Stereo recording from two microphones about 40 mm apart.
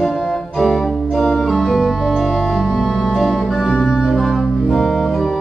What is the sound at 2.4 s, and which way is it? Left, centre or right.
Organ, centre.